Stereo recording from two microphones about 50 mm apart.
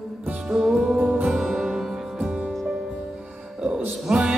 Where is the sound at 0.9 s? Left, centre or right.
Right.